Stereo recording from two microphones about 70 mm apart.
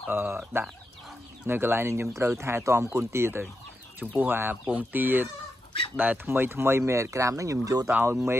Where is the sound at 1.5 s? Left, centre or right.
Right.